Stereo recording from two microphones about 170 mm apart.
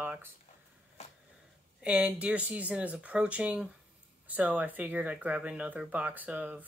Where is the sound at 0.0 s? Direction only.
10° right (ahead or behind).